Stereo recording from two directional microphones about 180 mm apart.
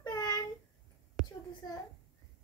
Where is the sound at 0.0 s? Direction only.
20° left (ahead or behind).